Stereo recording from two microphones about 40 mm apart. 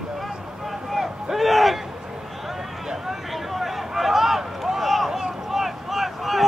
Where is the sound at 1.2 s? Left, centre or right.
Centre.